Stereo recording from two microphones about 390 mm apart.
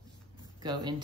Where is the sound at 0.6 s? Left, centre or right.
Centre.